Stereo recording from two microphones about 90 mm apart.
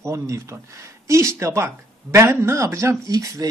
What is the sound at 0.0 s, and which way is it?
Speech, 35° right (ahead or behind).